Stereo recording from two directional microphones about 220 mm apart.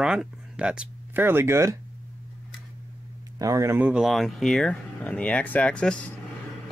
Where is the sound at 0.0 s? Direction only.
Centre (ahead or behind).